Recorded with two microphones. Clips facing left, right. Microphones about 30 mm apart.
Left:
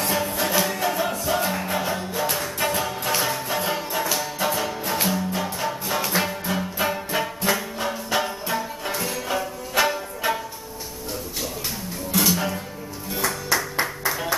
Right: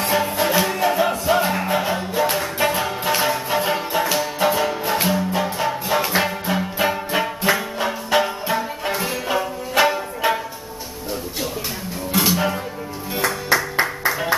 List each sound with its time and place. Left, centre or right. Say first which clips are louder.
0.0 s music: right 4 dB; centre
12.1 s music: right 3 dB; right